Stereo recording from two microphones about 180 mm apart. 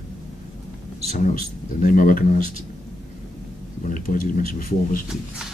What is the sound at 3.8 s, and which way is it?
Speech, 45° left (ahead or behind).